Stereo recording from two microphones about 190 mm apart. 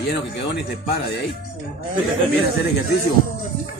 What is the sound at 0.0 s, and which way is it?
Speech, 65° left (ahead or behind).